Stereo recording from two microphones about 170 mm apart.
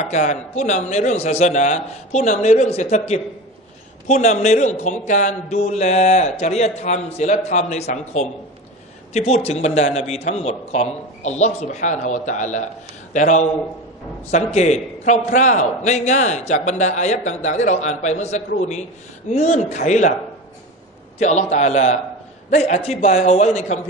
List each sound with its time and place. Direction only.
0.0 s a man's voice: 45° left (ahead or behind)
21.2 s a man's voice: 45° left (ahead or behind)